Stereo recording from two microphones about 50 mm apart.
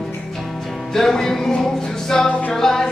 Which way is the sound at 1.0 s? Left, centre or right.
Centre.